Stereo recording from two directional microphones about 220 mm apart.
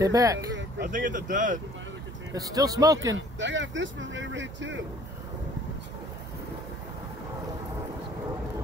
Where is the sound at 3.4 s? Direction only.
55° right (ahead or behind).